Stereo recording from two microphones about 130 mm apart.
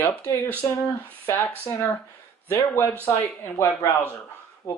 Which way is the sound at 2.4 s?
20° left (ahead or behind).